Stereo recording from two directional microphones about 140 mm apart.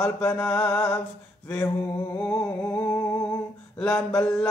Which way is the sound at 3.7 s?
10° left (ahead or behind).